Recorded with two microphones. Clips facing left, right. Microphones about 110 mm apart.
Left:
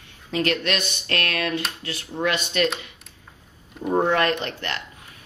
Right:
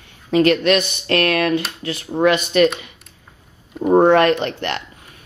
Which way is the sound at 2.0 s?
50° right (ahead or behind).